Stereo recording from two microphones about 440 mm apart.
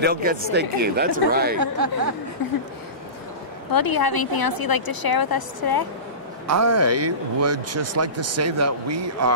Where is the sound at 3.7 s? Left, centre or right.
Left.